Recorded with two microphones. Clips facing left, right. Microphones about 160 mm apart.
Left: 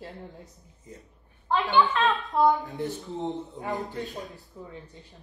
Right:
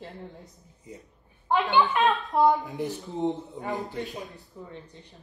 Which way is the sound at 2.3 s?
20° right (ahead or behind).